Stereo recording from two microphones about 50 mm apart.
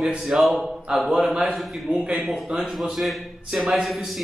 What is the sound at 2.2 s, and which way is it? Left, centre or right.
A man's voice, centre.